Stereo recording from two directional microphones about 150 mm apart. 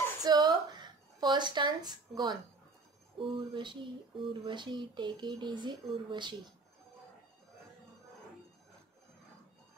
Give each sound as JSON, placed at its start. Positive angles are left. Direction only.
{"t": 0.2, "sound": "a woman's voice", "side_deg": -25}